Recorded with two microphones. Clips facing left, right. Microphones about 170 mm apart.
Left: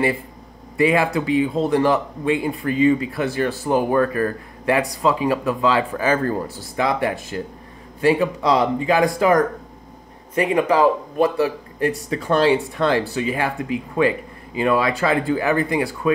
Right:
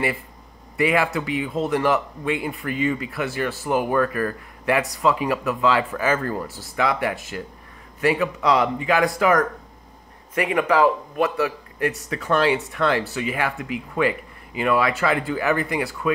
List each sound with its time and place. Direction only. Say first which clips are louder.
0.7 s speech: left 3 dB; 25° left (ahead or behind)
6.4 s a man's voice: left 1 dB; 20° left (ahead or behind)
10.3 s a man's voice: left 2 dB; 25° left (ahead or behind)